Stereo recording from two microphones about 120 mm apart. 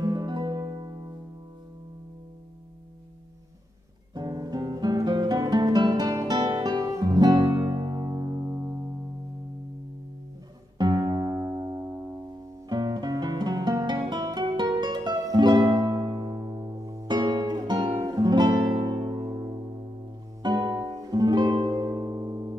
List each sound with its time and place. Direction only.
0.0 s music: 35° right (ahead or behind)
4.1 s music: 35° right (ahead or behind)
10.8 s music: 35° right (ahead or behind)